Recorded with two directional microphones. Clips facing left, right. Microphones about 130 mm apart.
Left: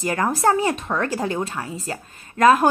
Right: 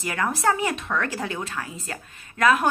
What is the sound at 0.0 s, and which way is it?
Speech, 35° left (ahead or behind).